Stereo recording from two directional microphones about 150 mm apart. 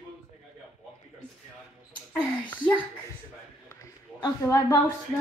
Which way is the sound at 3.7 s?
25° left (ahead or behind).